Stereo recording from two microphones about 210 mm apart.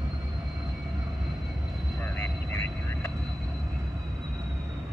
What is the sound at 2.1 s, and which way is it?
Vehicle, 10° left (ahead or behind).